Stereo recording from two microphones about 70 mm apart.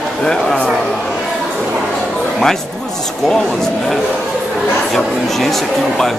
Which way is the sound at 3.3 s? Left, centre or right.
Centre.